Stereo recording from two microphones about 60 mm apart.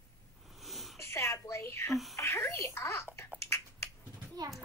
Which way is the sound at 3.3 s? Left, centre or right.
Left.